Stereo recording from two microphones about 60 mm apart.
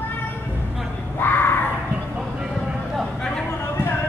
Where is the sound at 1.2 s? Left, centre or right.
Left.